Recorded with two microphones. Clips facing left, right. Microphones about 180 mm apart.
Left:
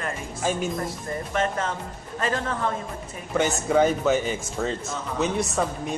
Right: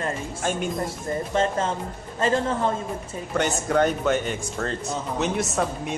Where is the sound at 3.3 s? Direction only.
Centre (ahead or behind).